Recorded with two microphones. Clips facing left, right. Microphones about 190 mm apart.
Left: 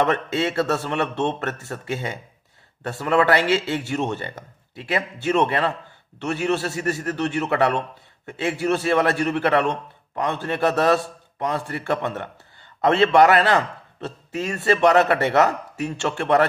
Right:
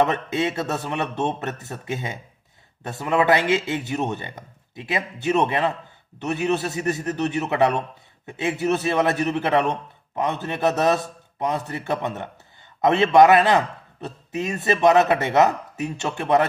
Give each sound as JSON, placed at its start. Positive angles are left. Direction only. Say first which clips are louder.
{"t": 0.0, "sound": "a man's voice", "louder": "even", "side_deg": -20}